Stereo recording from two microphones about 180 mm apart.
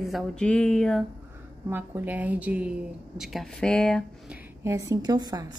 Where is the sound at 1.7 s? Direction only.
10° right (ahead or behind).